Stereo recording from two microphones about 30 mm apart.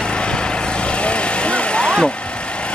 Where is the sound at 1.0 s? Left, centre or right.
Left.